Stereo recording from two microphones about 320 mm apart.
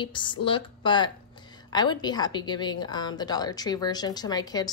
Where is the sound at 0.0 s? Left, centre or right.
Centre.